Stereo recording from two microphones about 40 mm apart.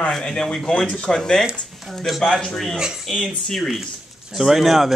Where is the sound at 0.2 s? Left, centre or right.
Centre.